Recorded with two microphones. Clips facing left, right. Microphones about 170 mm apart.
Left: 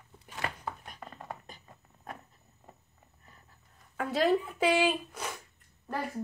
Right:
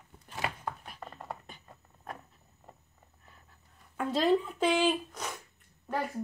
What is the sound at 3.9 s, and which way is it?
Speech, 5° left (ahead or behind).